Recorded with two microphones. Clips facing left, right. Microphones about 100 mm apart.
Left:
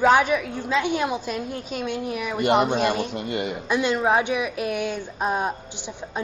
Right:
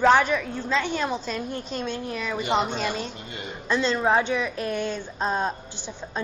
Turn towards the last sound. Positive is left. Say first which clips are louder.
# left 2 dB
turn(degrees=15)  # may be behind; listen again after turning